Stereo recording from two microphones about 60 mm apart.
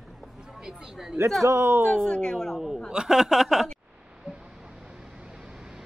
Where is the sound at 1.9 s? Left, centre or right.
Centre.